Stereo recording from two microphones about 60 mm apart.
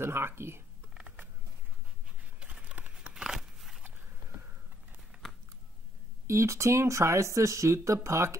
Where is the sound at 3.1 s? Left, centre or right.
Centre.